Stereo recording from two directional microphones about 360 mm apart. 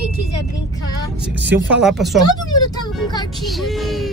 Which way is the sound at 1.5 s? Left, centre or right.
Centre.